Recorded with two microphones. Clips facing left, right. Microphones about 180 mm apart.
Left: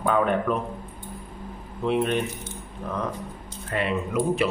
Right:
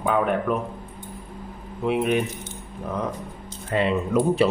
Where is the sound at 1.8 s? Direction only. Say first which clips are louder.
Right 1 dB; 10° right (ahead or behind).